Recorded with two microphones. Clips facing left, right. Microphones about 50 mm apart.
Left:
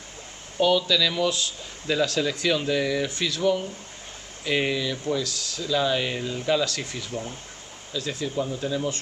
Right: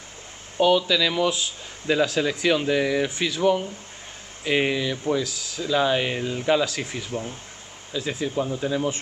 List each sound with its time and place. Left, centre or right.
0.6 s speech: centre